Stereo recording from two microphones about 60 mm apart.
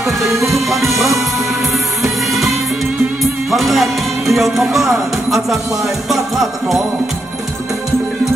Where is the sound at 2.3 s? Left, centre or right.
Centre.